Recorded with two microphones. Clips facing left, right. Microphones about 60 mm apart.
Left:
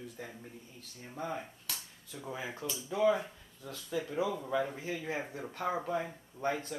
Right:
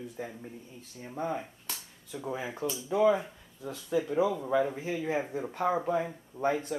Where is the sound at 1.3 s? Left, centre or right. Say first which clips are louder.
Right 4 dB; centre.